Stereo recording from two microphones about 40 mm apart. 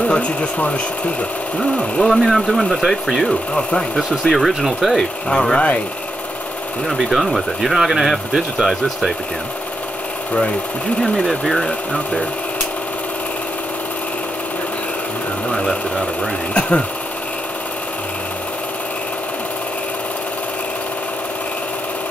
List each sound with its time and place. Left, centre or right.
0.1 s speech: left
2.0 s speech: centre
3.3 s speech: centre
3.9 s speech: centre
5.3 s speech: centre
7.0 s speech: centre
11.0 s speech: centre
16.5 s sewing machine: left